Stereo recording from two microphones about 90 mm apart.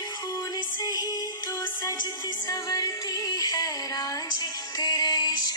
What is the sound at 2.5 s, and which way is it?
Music, 40° left (ahead or behind).